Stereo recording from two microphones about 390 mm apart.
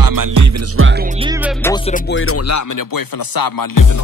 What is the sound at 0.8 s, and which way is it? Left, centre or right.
Music, right.